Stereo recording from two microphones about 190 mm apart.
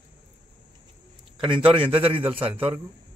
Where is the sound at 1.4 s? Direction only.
30° right (ahead or behind).